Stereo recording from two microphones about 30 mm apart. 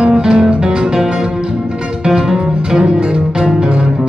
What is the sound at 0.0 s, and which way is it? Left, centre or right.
Music, right.